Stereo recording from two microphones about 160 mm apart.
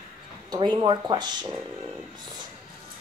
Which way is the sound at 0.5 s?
25° right (ahead or behind).